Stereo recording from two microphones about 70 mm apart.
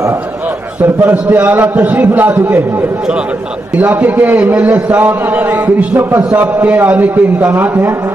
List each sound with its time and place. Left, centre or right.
1.3 s a man's voice: right
3.7 s a man's voice: right